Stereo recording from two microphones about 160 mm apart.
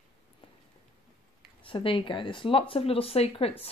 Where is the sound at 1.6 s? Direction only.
35° left (ahead or behind).